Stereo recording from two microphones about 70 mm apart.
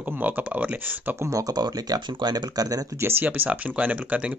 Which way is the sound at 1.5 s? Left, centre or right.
Right.